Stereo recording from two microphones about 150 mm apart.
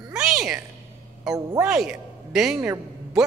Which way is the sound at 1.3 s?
5° right (ahead or behind).